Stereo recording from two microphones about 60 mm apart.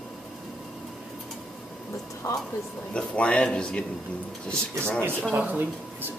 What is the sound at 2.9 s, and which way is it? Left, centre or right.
Dishes, centre.